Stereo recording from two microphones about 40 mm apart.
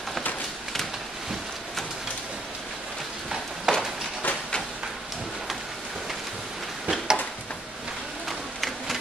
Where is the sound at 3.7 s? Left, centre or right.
Centre.